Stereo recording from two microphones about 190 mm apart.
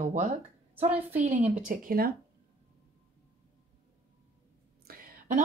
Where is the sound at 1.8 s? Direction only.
50° right (ahead or behind).